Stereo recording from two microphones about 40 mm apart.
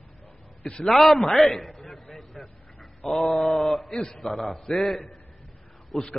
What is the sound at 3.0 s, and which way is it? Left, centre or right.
Speech, centre.